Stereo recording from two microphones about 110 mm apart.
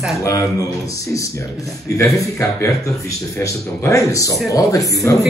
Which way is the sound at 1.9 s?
30° left (ahead or behind).